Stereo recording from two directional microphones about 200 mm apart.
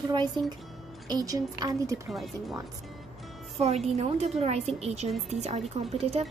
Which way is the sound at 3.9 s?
30° right (ahead or behind).